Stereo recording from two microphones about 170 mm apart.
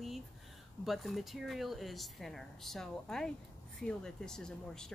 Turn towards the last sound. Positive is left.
turn(degrees=5)  # may be behind; listen again after turning